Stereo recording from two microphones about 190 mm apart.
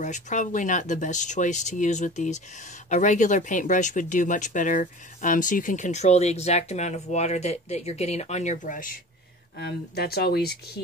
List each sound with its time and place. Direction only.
0.0 s speech: 40° left (ahead or behind)
9.6 s speech: 55° left (ahead or behind)